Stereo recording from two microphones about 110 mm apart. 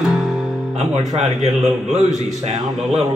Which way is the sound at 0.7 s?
80° right.